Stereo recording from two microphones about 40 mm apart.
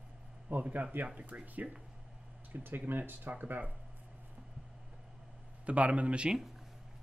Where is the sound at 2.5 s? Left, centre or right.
Right.